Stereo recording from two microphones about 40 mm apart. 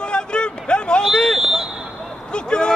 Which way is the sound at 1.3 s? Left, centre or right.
Centre.